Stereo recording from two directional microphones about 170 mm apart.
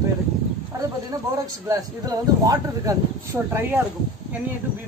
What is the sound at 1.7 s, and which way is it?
Speech, 20° right (ahead or behind).